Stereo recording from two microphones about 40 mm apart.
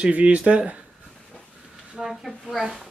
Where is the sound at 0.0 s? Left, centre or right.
Right.